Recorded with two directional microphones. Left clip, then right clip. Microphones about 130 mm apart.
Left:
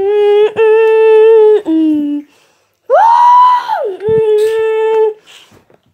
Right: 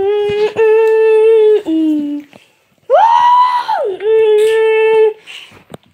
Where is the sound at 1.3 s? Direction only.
10° left (ahead or behind).